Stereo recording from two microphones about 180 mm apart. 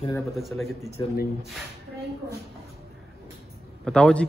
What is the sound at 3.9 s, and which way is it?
Speech, 5° left (ahead or behind).